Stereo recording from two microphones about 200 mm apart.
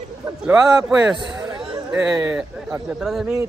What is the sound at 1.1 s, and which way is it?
Chatter, 20° right (ahead or behind).